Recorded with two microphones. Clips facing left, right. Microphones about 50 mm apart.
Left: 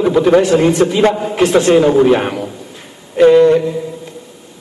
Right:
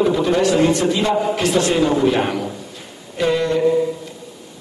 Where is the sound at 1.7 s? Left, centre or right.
Left.